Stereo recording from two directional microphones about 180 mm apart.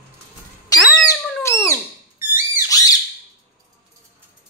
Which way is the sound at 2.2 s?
15° right (ahead or behind).